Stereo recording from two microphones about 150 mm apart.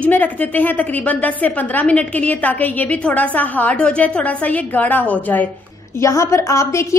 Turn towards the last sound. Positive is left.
turn(degrees=20)  # may be behind; listen again after turning